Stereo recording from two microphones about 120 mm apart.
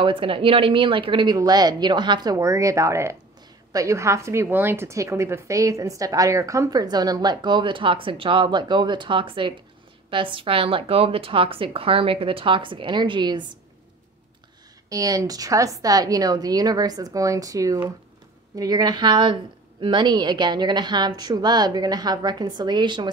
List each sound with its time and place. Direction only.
0.0 s a woman's voice: 45° right (ahead or behind)
14.9 s a woman's voice: 30° right (ahead or behind)